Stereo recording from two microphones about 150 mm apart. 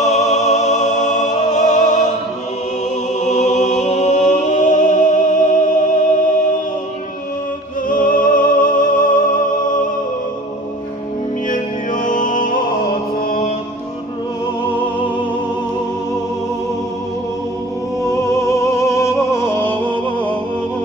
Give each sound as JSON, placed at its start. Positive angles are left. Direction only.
{"t": 0.0, "sound": "music", "side_deg": 50}
{"t": 3.2, "sound": "music", "side_deg": 50}
{"t": 7.9, "sound": "music", "side_deg": 65}
{"t": 11.4, "sound": "music", "side_deg": 60}
{"t": 18.0, "sound": "music", "side_deg": 20}